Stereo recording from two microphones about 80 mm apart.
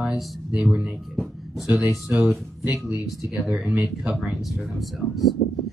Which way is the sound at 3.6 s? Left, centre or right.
Centre.